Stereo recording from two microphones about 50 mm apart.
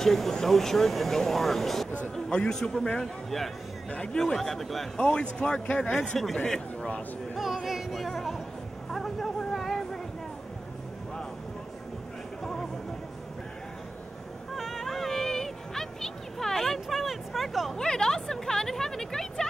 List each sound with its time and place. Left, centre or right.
0.0 s speech: centre
2.1 s a man's voice: centre
3.9 s speech: centre
4.4 s speech: centre
4.9 s a man's voice: left
7.3 s music: centre
8.9 s a sound: centre
14.5 s music: centre
17.7 s a sound: centre